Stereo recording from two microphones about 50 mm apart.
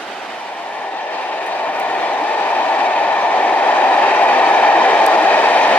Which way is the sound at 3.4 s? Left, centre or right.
Left.